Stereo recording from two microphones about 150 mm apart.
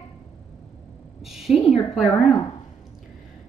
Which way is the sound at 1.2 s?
Centre (ahead or behind).